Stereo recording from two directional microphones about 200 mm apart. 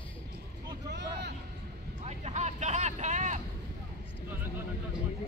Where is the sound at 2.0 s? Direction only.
35° right (ahead or behind).